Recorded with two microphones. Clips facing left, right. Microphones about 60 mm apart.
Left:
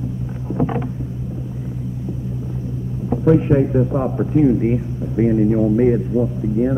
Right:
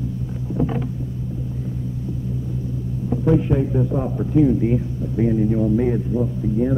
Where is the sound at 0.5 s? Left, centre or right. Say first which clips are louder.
Left 2 dB; left.